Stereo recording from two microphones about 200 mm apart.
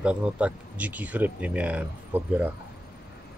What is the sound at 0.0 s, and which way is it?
Speech, 5° right (ahead or behind).